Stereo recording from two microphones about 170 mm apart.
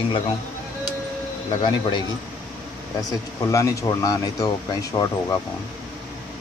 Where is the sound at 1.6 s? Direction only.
25° left (ahead or behind).